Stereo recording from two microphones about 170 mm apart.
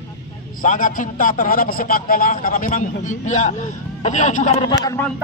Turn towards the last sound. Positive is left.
turn(degrees=15)  # may be behind; listen again after turning